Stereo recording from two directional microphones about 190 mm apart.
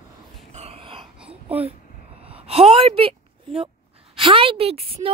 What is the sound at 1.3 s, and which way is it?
Babbling, 30° right (ahead or behind).